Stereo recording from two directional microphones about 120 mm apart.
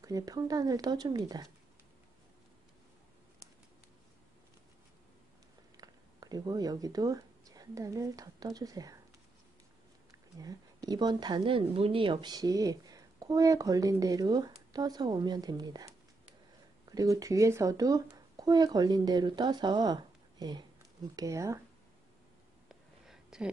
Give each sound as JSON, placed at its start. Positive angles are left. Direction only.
{"t": 0.0, "sound": "speech", "side_deg": -30}
{"t": 5.8, "sound": "speech", "side_deg": -35}
{"t": 10.4, "sound": "speech", "side_deg": -30}
{"t": 22.7, "sound": "a sound", "side_deg": -5}